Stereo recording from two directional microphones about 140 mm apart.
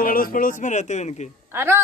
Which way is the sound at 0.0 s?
90° left.